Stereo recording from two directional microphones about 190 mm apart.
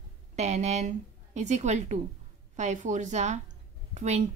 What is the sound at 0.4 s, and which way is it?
A woman's voice, 35° right (ahead or behind).